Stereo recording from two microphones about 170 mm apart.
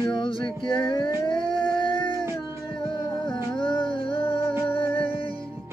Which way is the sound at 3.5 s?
30° left (ahead or behind).